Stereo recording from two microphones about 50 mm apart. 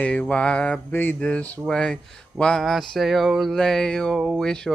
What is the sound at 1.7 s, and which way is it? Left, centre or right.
Speech, left.